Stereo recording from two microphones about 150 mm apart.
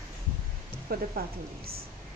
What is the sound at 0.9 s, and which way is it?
Speech, 80° right.